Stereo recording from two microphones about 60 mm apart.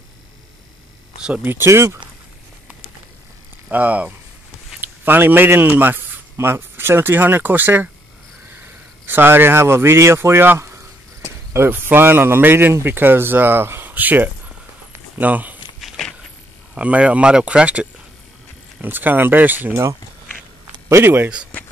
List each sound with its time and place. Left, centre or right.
1.3 s speech: right
1.7 s speech: right
3.7 s speech: right
9.0 s speech: right
14.9 s a sound: right
16.7 s speech: right
18.8 s speech: right
19.7 s speech: right
20.9 s speech: right